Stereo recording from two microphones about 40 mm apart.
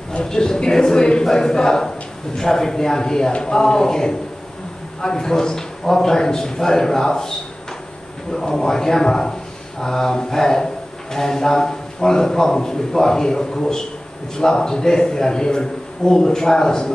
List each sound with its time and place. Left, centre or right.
0.2 s a man's voice: centre